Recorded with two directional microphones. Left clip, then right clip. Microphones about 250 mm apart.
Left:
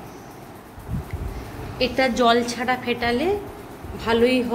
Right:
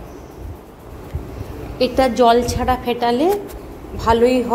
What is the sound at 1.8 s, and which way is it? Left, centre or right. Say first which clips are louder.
A woman's voice: right 5 dB; centre.